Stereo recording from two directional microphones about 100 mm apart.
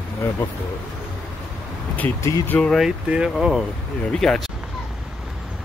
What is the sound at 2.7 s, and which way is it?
Speech, 5° right (ahead or behind).